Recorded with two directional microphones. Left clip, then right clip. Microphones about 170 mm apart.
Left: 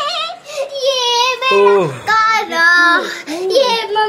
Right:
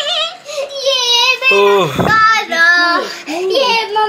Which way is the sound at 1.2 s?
5° right (ahead or behind).